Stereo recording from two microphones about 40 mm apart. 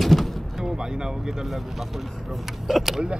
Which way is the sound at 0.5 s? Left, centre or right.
Centre.